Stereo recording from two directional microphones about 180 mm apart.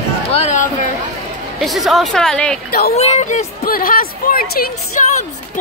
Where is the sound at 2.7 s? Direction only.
55° left (ahead or behind).